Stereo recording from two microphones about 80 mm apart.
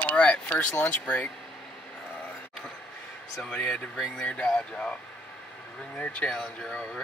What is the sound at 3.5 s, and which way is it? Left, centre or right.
Speech, centre.